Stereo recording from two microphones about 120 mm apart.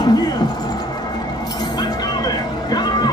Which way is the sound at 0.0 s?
35° left (ahead or behind).